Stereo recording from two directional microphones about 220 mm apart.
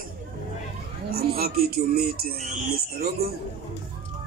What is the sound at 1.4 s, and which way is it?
Speech, 45° right (ahead or behind).